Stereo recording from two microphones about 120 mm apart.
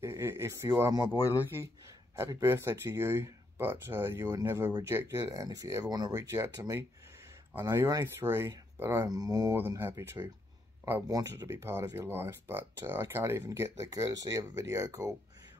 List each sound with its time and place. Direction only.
0.0 s speech: 20° right (ahead or behind)
1.1 s speech: 30° left (ahead or behind)
2.1 s speech: 25° right (ahead or behind)
4.2 s speech: 30° right (ahead or behind)
9.0 s speech: 35° right (ahead or behind)
9.6 s speech: 20° right (ahead or behind)
11.1 s speech: 30° right (ahead or behind)